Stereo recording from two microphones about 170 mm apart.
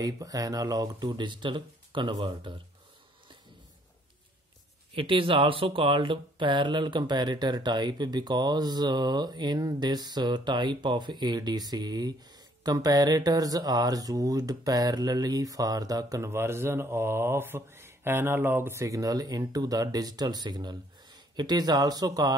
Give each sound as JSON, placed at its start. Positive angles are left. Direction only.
{"t": 0.0, "sound": "speech", "side_deg": -20}
{"t": 4.9, "sound": "speech", "side_deg": -30}